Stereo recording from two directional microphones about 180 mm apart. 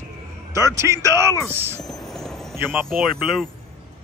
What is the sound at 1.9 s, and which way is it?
Music, centre (ahead or behind).